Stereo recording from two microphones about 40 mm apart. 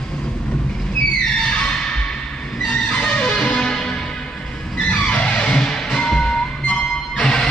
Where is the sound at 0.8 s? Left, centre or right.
Left.